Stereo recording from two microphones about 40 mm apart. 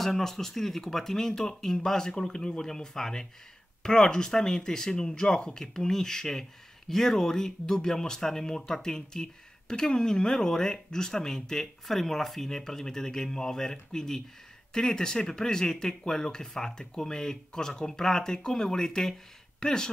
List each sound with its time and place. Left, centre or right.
0.0 s speech: centre